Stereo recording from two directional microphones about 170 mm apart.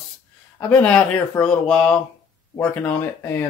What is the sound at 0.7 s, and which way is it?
Speech, 5° left (ahead or behind).